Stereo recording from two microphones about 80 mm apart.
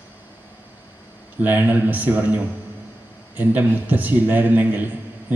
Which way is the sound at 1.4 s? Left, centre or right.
Right.